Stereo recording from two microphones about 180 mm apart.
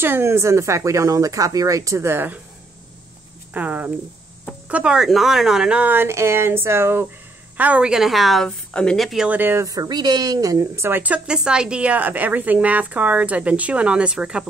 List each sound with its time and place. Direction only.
0.0 s a woman's voice: 15° right (ahead or behind)
3.5 s a woman's voice: 10° right (ahead or behind)